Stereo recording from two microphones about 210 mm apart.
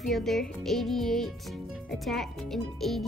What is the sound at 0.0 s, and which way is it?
Speech, centre (ahead or behind).